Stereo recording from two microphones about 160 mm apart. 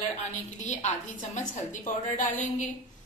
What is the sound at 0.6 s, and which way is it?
A woman's voice, 50° left (ahead or behind).